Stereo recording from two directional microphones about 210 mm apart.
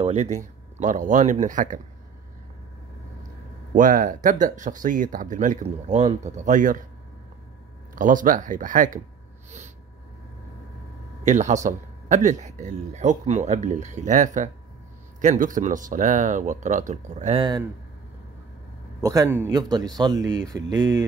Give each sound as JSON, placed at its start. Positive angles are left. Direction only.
{"t": 0.0, "sound": "a man's voice", "side_deg": -35}
{"t": 3.7, "sound": "a man's voice", "side_deg": -40}
{"t": 7.9, "sound": "a man's voice", "side_deg": -40}
{"t": 11.2, "sound": "a man's voice", "side_deg": -35}
{"t": 18.9, "sound": "a man's voice", "side_deg": -15}